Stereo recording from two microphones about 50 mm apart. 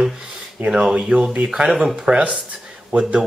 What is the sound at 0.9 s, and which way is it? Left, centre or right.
Speech, centre.